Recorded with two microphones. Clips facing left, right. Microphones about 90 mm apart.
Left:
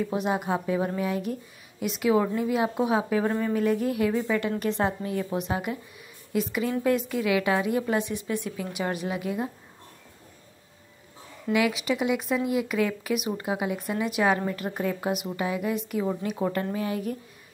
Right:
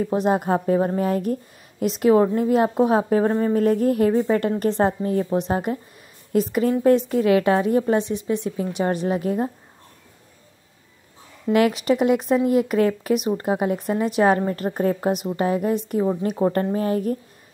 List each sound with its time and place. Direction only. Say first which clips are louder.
0.0 s a woman's voice: right 6 dB; 40° right (ahead or behind)
11.5 s a woman's voice: right 6 dB; 45° right (ahead or behind)